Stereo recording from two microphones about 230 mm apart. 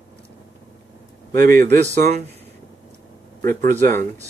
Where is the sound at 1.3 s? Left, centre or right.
Right.